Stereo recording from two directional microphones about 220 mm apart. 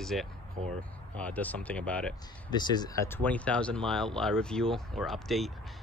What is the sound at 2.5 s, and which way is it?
Speech, 20° left (ahead or behind).